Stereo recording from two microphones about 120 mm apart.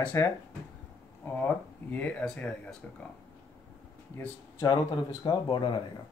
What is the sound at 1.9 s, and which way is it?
Speech, 10° left (ahead or behind).